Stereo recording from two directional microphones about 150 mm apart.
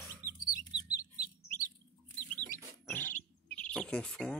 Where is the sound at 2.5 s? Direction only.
10° left (ahead or behind).